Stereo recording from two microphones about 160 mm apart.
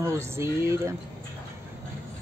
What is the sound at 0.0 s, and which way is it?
Speech, 15° right (ahead or behind).